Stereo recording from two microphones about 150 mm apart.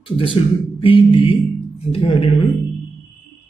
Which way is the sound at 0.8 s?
35° left (ahead or behind).